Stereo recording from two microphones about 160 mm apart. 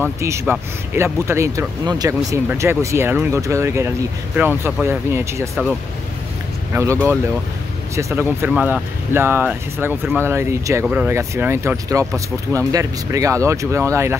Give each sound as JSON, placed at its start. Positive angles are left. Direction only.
{"t": 0.0, "sound": "speech", "side_deg": -15}
{"t": 6.7, "sound": "speech", "side_deg": -15}